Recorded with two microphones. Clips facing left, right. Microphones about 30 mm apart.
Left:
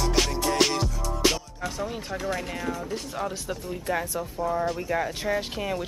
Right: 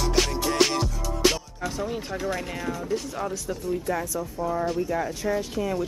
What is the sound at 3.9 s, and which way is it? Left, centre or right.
Speech, left.